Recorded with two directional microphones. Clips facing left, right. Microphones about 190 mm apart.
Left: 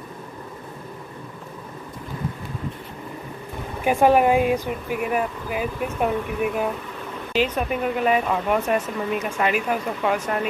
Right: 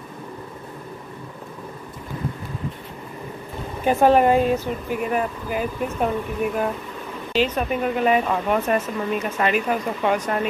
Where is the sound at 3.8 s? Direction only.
10° left (ahead or behind).